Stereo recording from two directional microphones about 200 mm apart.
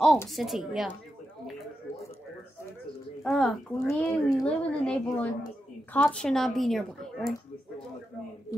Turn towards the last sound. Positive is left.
turn(degrees=0)  # may be behind; listen again after turning